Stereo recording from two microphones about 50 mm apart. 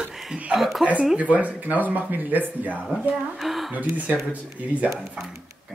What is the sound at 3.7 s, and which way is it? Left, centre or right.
Speech, right.